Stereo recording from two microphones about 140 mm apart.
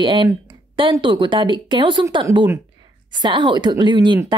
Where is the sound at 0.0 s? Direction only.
35° right (ahead or behind).